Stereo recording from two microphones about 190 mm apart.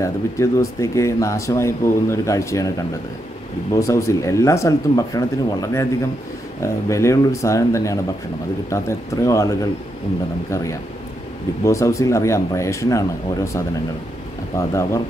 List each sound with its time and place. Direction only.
0.0 s speech: 15° left (ahead or behind)
3.7 s speech: 15° left (ahead or behind)
14.7 s speech: 15° left (ahead or behind)